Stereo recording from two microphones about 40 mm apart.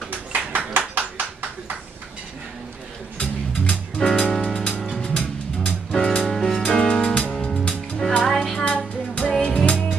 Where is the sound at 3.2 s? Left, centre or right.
Left.